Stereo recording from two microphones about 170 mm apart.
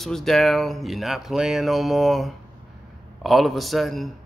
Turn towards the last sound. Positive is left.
turn(degrees=0)  # may be behind; listen again after turning